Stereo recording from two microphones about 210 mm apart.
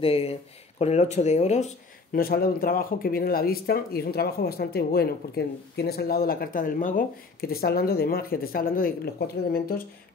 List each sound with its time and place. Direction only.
0.0 s speech: 25° left (ahead or behind)
2.1 s speech: 45° left (ahead or behind)